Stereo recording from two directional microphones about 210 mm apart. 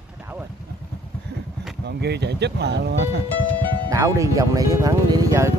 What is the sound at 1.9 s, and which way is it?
Speech, 50° right (ahead or behind).